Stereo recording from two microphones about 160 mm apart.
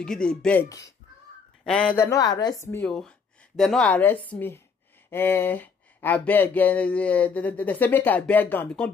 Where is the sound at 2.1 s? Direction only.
25° left (ahead or behind).